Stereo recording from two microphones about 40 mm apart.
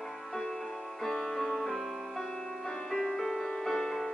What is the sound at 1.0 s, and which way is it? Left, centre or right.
Music, centre.